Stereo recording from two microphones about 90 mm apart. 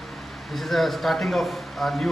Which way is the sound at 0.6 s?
Centre (ahead or behind).